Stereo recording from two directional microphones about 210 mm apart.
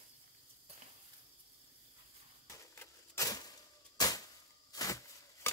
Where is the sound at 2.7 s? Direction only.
15° left (ahead or behind).